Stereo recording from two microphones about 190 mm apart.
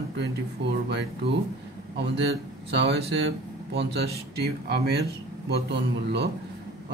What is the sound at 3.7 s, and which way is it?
Speech, 60° right (ahead or behind).